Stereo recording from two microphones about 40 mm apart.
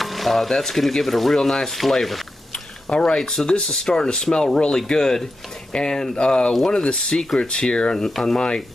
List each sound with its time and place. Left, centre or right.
0.0 s speech: centre
2.9 s speech: centre